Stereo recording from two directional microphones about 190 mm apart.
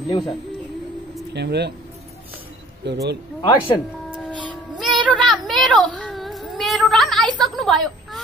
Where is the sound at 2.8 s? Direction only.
65° right (ahead or behind).